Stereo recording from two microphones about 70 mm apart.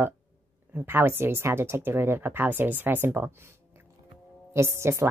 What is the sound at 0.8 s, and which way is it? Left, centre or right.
Speech, right.